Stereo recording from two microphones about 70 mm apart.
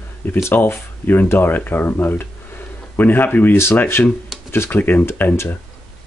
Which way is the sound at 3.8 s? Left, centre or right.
Left.